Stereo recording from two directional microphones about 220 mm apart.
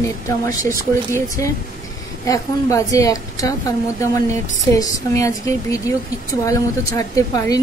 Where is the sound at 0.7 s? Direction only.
15° left (ahead or behind).